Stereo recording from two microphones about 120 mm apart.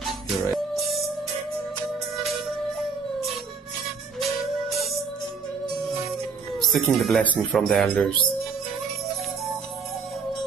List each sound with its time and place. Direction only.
0.0 s music: centre (ahead or behind)
4.2 s music: centre (ahead or behind)
6.6 s speech: centre (ahead or behind)